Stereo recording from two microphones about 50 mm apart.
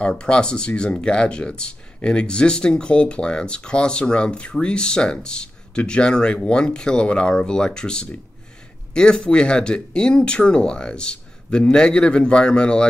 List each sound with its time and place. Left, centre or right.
0.2 s speech: centre